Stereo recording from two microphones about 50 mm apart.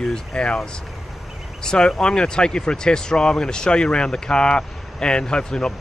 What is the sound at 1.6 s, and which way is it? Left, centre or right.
Speech, centre.